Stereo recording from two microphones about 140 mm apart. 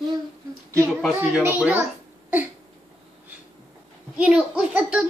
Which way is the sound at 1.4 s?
10° right (ahead or behind).